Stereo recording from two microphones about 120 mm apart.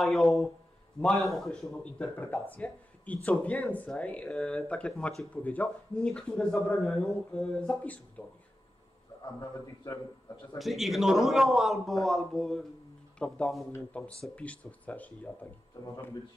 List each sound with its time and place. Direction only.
0.0 s a man's voice: centre (ahead or behind)
9.2 s a man's voice: 35° left (ahead or behind)
10.6 s a man's voice: centre (ahead or behind)
15.8 s a man's voice: 20° left (ahead or behind)